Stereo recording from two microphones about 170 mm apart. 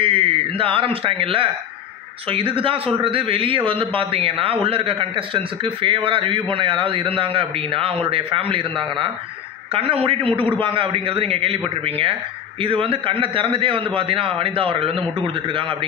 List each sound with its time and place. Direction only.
0.0 s a man's voice: 30° right (ahead or behind)